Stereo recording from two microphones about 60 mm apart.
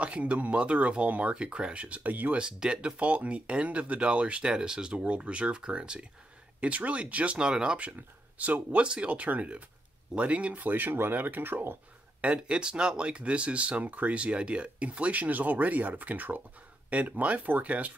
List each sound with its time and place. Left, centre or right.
0.0 s speech: right
2.4 s speech: centre; by 11.8 s right
12.2 s speech: centre